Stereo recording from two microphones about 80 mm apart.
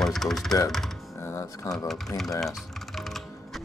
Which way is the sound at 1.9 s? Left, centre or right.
Centre.